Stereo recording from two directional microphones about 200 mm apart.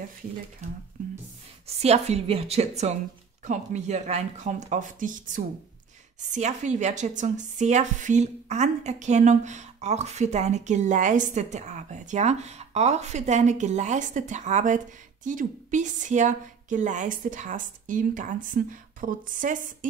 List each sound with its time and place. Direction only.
0.6 s a woman's voice: 35° right (ahead or behind)